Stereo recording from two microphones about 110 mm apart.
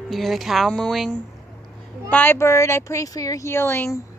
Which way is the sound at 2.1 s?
20° left (ahead or behind).